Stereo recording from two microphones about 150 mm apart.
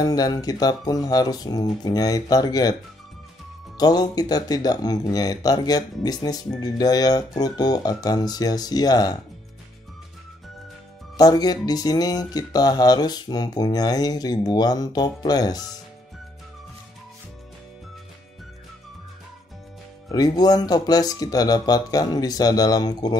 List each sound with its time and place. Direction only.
0.0 s speech: 25° left (ahead or behind)
3.7 s speech: 25° left (ahead or behind)
11.1 s speech: 25° left (ahead or behind)
20.1 s speech: 25° left (ahead or behind)